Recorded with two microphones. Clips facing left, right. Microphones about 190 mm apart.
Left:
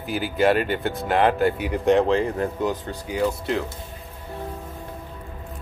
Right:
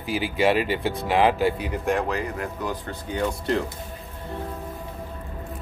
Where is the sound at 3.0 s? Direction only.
5° left (ahead or behind).